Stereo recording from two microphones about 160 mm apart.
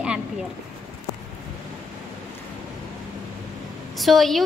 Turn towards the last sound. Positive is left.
turn(degrees=0)  # may be behind; listen again after turning